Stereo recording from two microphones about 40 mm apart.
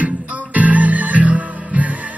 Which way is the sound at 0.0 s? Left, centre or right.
Right.